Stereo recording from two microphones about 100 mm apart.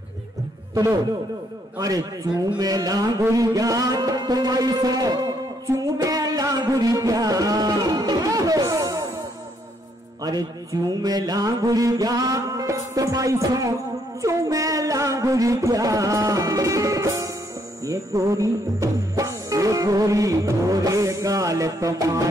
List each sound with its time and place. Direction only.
1.8 s music: 35° right (ahead or behind)
10.2 s music: 40° right (ahead or behind)
14.2 s a sound: 35° right (ahead or behind)
17.8 s music: 35° right (ahead or behind)